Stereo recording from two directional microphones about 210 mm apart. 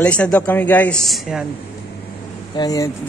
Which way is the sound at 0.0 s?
5° left (ahead or behind).